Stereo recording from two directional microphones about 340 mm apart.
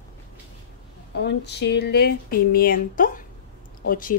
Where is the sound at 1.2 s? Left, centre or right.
Left.